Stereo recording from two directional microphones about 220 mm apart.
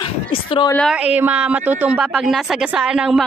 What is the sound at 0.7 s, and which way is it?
A woman's voice, centre (ahead or behind).